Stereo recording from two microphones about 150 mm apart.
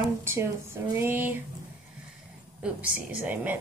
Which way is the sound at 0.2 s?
15° right (ahead or behind).